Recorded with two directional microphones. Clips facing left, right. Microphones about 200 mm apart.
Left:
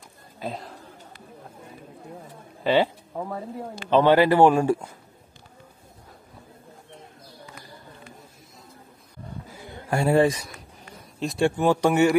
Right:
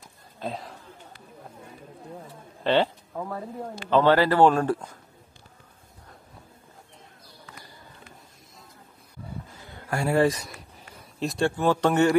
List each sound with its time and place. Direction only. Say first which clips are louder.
0.4 s speech: even; centre (ahead or behind)
2.2 s a sound: left 1 dB; 10° left (ahead or behind)
3.9 s a man's voice: left 2 dB; 15° left (ahead or behind)
9.8 s a man's voice: left 3 dB; 20° left (ahead or behind)
11.1 s speech: left 1 dB; centre (ahead or behind)
11.4 s a man's voice: left 2 dB; 15° left (ahead or behind)